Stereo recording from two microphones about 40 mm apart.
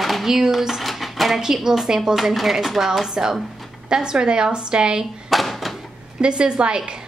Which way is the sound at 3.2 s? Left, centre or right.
Centre.